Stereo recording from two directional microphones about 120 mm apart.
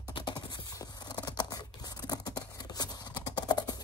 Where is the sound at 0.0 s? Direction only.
40° left (ahead or behind).